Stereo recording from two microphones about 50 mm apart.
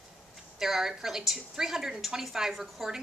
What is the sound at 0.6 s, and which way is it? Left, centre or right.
A woman's voice, centre.